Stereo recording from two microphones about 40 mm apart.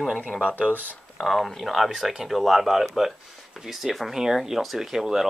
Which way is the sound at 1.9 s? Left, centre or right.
Centre.